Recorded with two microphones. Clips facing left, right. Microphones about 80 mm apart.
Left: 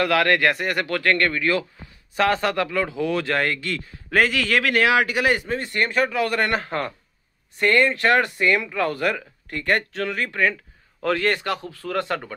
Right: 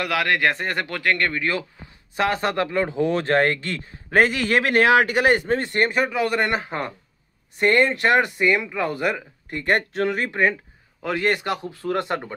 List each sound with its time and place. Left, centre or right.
0.0 s speech: centre; by 5.9 s right
5.9 s a man's voice: centre